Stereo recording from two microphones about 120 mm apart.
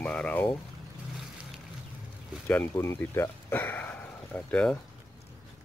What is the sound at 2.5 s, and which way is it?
Speech, 20° left (ahead or behind).